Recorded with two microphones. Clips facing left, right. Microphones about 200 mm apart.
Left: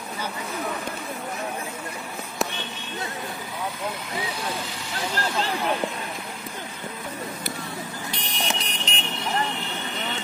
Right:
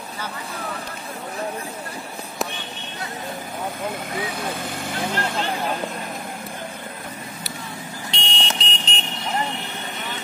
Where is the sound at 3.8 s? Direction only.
50° right (ahead or behind).